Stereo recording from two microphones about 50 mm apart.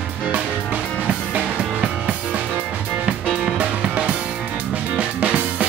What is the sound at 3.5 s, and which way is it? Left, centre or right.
Music, right.